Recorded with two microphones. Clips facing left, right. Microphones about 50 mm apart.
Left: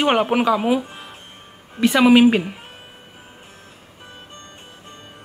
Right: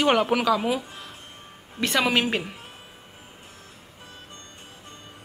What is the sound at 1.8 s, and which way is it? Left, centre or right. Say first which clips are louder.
Speech: left 10 dB; centre.